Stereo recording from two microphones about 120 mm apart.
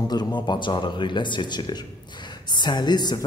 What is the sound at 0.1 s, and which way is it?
Speech, 35° left (ahead or behind).